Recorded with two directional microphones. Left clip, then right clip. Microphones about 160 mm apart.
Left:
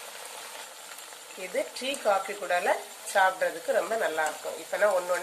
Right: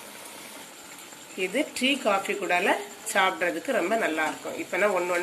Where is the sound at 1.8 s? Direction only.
45° left (ahead or behind).